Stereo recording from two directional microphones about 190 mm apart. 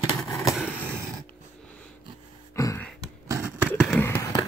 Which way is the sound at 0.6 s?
5° right (ahead or behind).